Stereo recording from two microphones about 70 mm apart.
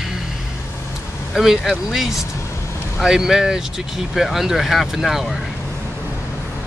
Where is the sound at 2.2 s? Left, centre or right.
Left.